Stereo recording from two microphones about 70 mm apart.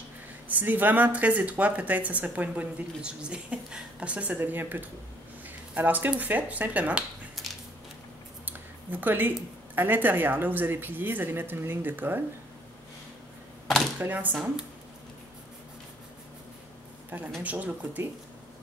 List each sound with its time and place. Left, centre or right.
0.5 s a woman's voice: right
7.4 s a sound: centre
8.5 s a sound: right
9.8 s a woman's voice: right
13.9 s a woman's voice: right
17.4 s a woman's voice: right